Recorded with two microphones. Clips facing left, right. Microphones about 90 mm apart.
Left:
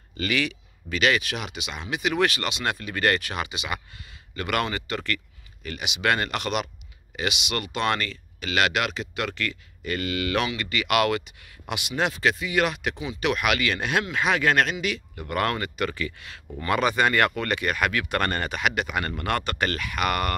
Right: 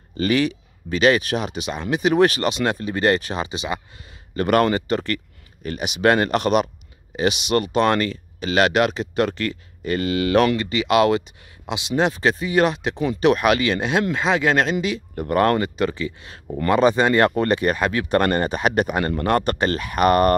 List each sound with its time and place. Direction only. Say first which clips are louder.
0.2 s speech: right 7 dB; 35° right (ahead or behind)